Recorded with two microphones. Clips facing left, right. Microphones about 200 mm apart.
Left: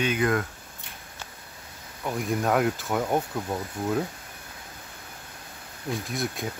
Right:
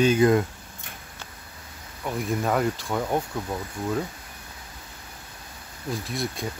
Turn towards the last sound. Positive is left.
turn(degrees=0)  # may be behind; listen again after turning